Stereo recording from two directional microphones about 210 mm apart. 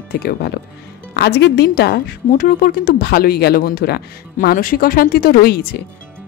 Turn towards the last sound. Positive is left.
turn(degrees=45)  # may be behind; listen again after turning